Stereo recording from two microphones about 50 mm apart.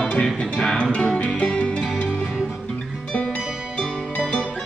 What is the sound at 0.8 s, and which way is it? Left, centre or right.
Music, left.